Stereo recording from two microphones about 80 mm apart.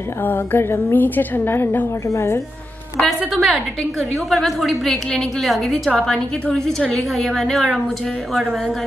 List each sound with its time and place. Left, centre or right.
0.2 s a woman's voice: left
3.0 s a woman's voice: centre